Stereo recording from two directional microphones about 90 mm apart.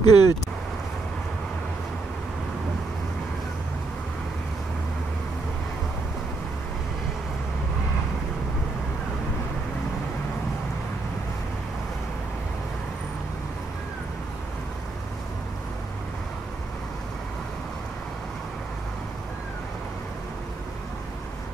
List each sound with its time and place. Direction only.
0.0 s speech: 50° left (ahead or behind)